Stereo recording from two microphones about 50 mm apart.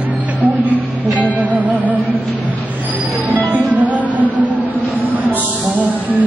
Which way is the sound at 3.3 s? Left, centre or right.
Right.